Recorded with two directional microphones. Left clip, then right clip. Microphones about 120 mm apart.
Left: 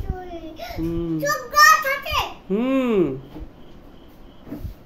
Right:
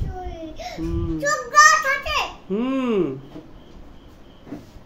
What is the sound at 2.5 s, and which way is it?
Speech, 40° left (ahead or behind).